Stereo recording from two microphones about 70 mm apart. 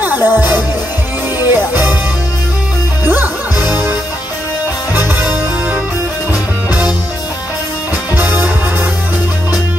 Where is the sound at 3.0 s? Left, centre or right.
Right.